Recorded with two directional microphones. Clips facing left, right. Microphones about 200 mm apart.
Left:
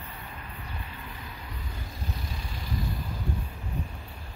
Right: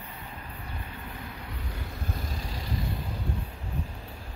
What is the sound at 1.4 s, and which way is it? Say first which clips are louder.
Vehicle: right 2 dB; 65° right (ahead or behind).